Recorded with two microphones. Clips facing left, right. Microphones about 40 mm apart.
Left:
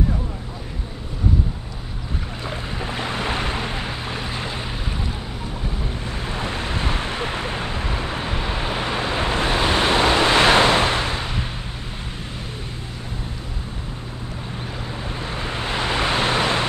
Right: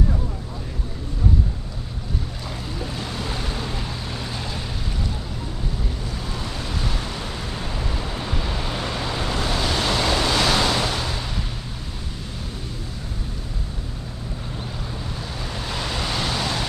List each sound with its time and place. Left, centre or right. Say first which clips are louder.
2.8 s boat: left 5 dB; left
6.0 s vehicle: left 4 dB; left
15.0 s vehicle: left 4 dB; left